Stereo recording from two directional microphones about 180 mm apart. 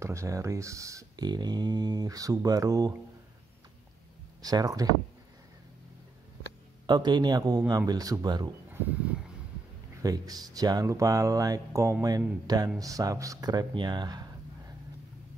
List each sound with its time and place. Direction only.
0.0 s speech: 15° right (ahead or behind)
4.4 s speech: 20° right (ahead or behind)
6.9 s speech: 25° right (ahead or behind)
10.0 s speech: 20° right (ahead or behind)